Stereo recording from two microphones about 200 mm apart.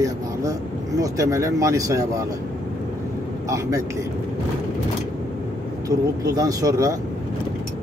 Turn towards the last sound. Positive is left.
turn(degrees=-15)  # may be behind; listen again after turning